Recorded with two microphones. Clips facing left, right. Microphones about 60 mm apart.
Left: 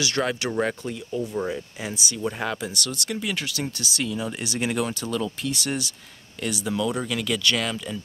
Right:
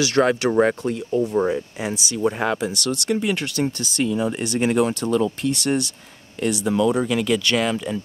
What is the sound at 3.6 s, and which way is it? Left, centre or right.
Speech, centre.